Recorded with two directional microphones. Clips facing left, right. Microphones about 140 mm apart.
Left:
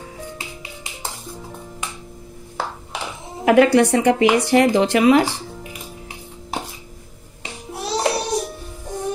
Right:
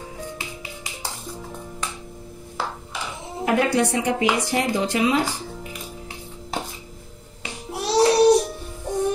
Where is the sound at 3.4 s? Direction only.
70° left (ahead or behind).